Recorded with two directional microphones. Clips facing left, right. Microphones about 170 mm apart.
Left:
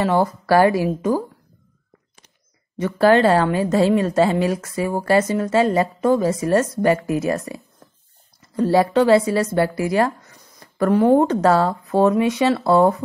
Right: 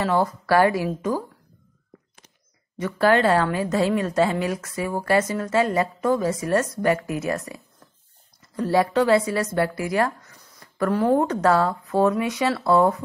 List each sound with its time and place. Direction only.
0.0 s a woman's voice: 30° left (ahead or behind)
2.8 s a woman's voice: 30° left (ahead or behind)